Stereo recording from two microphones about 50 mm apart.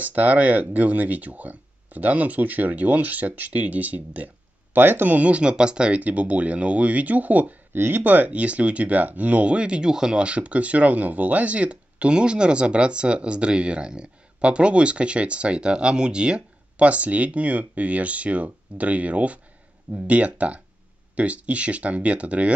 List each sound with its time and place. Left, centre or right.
0.0 s speech: right
4.7 s speech: right
7.7 s speech: right
8.0 s speech: right